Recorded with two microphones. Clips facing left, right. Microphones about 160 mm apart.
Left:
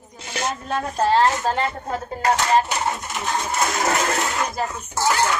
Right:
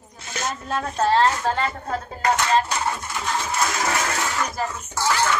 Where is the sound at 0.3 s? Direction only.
15° left (ahead or behind).